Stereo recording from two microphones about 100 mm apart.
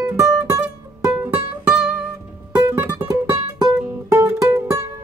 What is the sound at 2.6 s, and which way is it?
Music, 25° right (ahead or behind).